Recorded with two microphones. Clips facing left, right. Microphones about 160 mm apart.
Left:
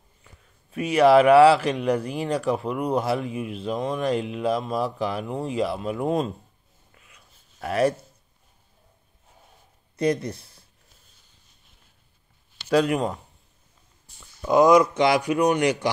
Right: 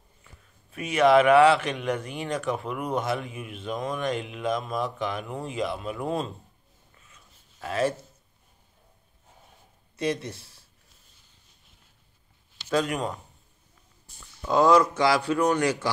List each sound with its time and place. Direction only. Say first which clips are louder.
0.2 s speech: left 1 dB; 30° left (ahead or behind)
7.6 s speech: left 4 dB; 35° left (ahead or behind)
10.0 s speech: left 5 dB; 35° left (ahead or behind)
10.3 s speech: left 3 dB; 30° right (ahead or behind)
12.6 s speech: left 5 dB; 35° left (ahead or behind)
14.4 s speech: left 3 dB; 15° left (ahead or behind)